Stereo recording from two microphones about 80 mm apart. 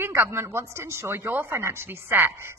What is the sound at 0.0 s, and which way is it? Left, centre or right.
A woman's voice, right.